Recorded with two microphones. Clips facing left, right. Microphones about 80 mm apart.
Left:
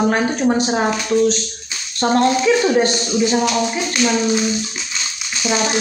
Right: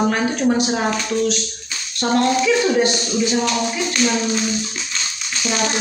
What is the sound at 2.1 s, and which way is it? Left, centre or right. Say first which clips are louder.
Speech: left 1 dB; left.